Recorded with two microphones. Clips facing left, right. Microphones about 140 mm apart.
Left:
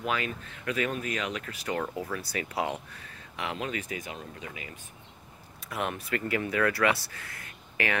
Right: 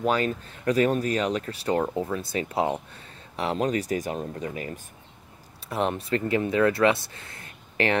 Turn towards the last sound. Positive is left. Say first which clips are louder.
# right 6 dB
turn(degrees=-30)  # may be behind; listen again after turning